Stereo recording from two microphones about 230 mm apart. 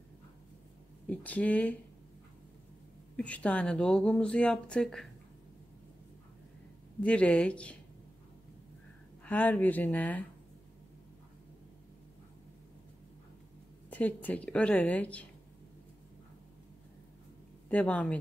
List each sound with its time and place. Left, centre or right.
1.0 s speech: centre
3.2 s speech: centre
7.0 s speech: centre
9.2 s speech: centre
13.8 s speech: centre
17.6 s speech: centre